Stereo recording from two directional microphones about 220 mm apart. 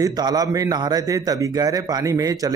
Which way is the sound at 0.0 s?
15° right (ahead or behind).